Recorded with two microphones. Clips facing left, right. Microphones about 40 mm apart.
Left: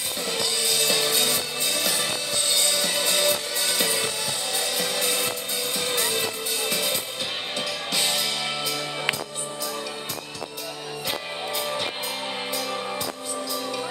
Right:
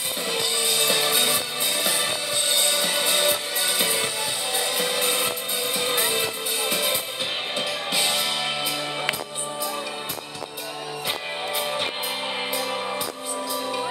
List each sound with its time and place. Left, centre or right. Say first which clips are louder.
0.3 s music: right 1 dB; centre
8.0 s music: right 1 dB; centre
11.1 s music: right 1 dB; centre